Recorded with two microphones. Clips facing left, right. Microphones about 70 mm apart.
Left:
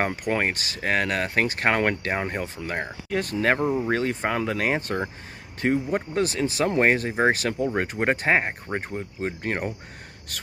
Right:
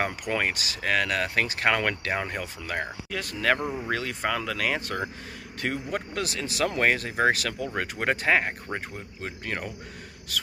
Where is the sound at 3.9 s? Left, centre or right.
Left.